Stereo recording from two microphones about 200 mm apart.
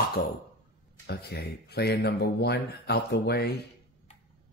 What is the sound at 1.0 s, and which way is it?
Speech, 55° left (ahead or behind).